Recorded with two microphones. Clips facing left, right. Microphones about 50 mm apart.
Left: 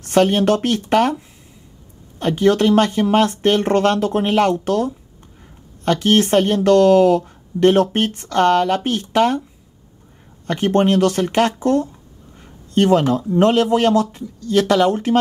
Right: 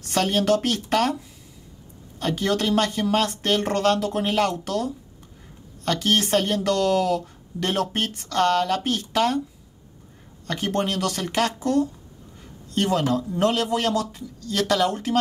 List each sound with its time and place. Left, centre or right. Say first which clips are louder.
0.0 s speech: left 7 dB; left
2.1 s a woman's voice: left 8 dB; left
10.4 s a woman's voice: left 8 dB; left